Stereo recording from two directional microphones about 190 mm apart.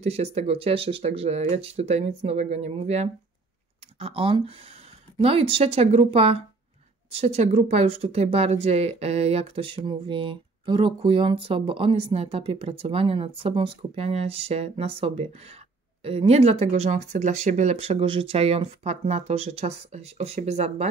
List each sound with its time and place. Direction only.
0.0 s speech: 35° right (ahead or behind)